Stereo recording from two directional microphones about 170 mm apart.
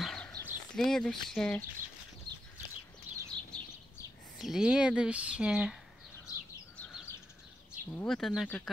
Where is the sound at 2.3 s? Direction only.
25° right (ahead or behind).